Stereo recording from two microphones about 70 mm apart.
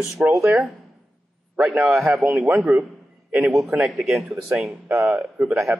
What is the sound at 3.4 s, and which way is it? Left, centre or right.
Speech, centre.